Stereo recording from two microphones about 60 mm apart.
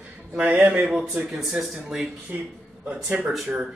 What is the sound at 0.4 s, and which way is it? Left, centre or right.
Speech, right.